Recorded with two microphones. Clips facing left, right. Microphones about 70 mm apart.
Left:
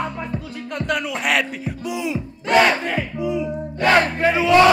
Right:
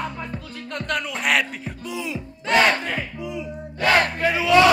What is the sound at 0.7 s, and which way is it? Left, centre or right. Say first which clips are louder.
Music: left 3 dB; centre.